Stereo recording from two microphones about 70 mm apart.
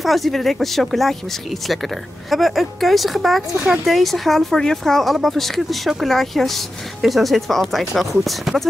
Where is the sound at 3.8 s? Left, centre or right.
Centre.